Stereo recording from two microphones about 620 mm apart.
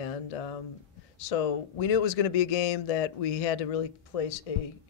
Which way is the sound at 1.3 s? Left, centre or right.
Left.